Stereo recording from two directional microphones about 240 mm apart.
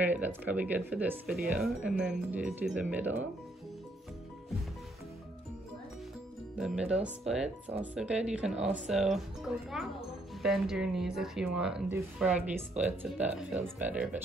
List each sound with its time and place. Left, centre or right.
0.0 s speech: centre
6.5 s speech: centre